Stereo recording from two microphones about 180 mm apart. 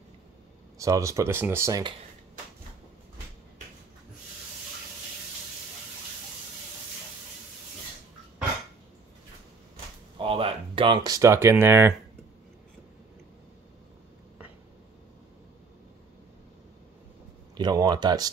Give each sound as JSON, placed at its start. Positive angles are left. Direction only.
{"t": 0.7, "sound": "speech", "side_deg": -15}
{"t": 10.1, "sound": "speech", "side_deg": -30}
{"t": 17.6, "sound": "speech", "side_deg": -25}